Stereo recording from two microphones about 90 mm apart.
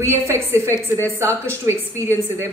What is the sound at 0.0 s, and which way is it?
A woman's voice, 30° right (ahead or behind).